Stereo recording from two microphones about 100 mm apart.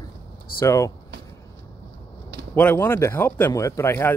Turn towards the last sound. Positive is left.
turn(degrees=25)  # may be behind; listen again after turning